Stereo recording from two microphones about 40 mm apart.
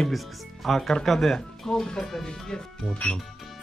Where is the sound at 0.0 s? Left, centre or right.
Centre.